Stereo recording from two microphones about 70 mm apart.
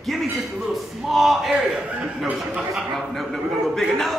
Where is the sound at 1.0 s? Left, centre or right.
Centre.